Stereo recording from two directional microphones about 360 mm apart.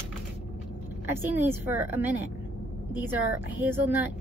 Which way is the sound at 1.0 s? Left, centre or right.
Centre.